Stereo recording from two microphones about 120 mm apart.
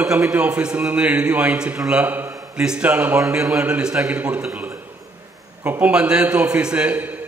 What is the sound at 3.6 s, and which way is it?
A man's voice, 10° right (ahead or behind).